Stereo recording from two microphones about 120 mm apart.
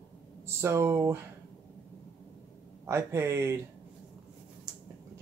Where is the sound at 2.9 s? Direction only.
20° right (ahead or behind).